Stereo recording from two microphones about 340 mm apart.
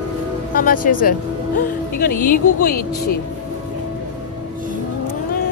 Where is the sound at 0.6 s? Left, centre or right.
Left.